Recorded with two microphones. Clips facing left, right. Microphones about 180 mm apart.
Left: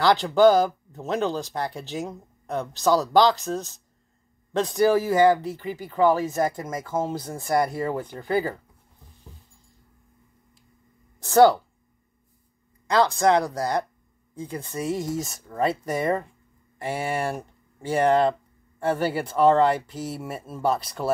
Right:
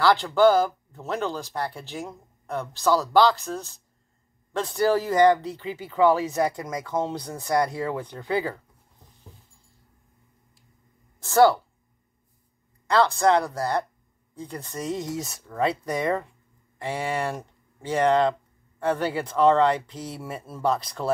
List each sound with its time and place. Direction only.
0.0 s speech: 20° left (ahead or behind)
5.4 s speech: 20° right (ahead or behind)
5.9 s speech: centre (ahead or behind)
11.1 s speech: 20° left (ahead or behind)
12.8 s speech: 15° left (ahead or behind)